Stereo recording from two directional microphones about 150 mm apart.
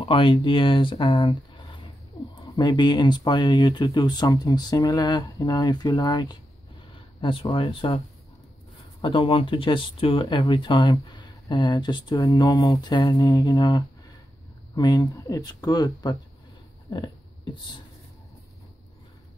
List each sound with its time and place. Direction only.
0.0 s speech: 35° left (ahead or behind)
9.0 s speech: 35° left (ahead or behind)
10.2 s speech: 25° left (ahead or behind)
16.9 s a sound: 30° left (ahead or behind)